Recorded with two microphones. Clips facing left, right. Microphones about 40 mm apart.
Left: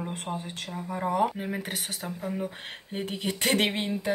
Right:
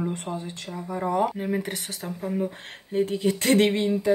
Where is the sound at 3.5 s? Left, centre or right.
Centre.